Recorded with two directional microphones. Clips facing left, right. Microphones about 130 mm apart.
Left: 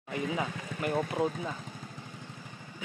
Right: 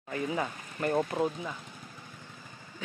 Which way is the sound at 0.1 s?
10° left (ahead or behind).